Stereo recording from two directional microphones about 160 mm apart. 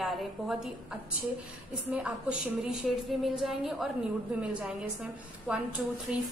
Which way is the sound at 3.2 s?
Centre (ahead or behind).